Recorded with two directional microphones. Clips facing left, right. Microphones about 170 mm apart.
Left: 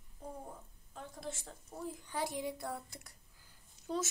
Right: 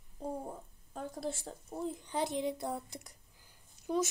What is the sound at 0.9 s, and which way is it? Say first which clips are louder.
Speech: right 6 dB; 40° right (ahead or behind).